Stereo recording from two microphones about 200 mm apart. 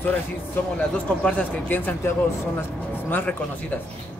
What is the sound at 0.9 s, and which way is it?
Speech, 5° left (ahead or behind).